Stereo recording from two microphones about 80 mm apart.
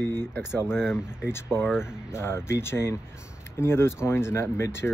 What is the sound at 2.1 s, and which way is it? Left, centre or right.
Speech, left.